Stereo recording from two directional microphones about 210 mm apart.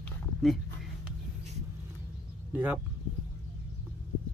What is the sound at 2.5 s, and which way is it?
Speech, 5° right (ahead or behind).